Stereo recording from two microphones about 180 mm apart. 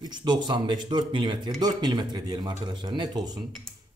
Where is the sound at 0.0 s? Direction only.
25° right (ahead or behind).